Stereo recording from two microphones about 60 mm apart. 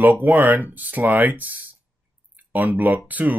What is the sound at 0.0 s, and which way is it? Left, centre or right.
Speech, right.